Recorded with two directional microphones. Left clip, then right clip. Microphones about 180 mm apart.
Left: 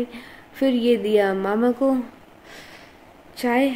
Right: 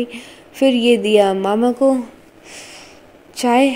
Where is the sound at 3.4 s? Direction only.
25° right (ahead or behind).